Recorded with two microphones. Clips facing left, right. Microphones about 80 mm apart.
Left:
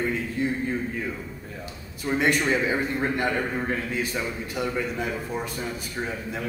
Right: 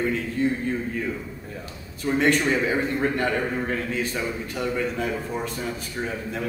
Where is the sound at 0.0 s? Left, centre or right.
Centre.